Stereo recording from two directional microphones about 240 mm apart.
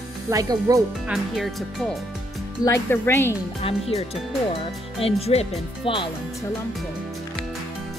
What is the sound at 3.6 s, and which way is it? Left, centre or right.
Speech, left.